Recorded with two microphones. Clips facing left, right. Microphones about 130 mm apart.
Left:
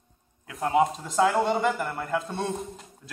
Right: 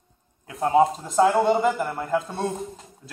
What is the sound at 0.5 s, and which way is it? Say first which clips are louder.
A man's voice: right 4 dB; 25° right (ahead or behind).